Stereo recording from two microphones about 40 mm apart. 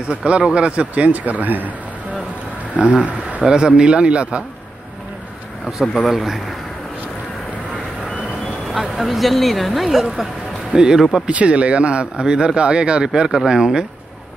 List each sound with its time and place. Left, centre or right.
0.1 s speech: right
2.8 s speech: right
3.4 s speech: right
6.0 s speech: centre
8.7 s speech: centre
10.7 s speech: centre
11.2 s speech: right
13.1 s speech: centre